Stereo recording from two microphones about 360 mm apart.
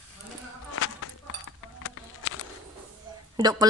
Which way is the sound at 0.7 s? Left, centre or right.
Left.